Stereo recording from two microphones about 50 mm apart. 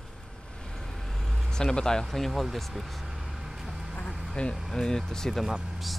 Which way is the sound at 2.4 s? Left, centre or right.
Centre.